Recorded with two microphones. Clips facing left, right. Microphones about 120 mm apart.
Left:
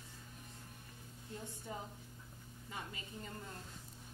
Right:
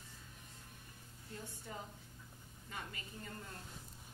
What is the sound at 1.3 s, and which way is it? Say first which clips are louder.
A woman's voice: left 2 dB; 20° left (ahead or behind).